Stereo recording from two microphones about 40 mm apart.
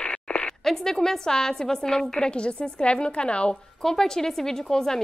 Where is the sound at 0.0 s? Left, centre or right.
Left.